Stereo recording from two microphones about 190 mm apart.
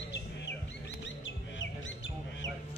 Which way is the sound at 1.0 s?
75° left (ahead or behind).